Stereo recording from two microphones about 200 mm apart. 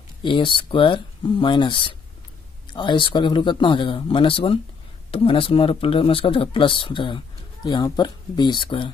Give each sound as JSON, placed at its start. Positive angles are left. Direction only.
{"t": 0.2, "sound": "speech", "side_deg": 25}